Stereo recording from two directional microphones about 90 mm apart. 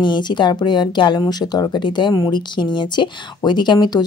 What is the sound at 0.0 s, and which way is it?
Speech, 55° left (ahead or behind).